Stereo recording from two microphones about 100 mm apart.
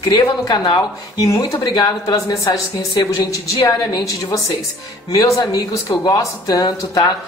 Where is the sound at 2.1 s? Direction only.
35° left (ahead or behind).